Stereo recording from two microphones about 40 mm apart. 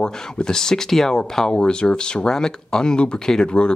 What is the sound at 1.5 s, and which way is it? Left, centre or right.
Speech, left.